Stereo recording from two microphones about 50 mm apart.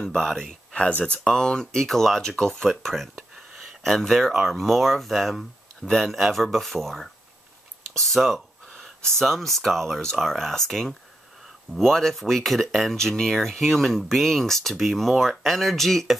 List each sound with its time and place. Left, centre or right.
0.0 s speech: centre
0.7 s speech: left
1.2 s speech: centre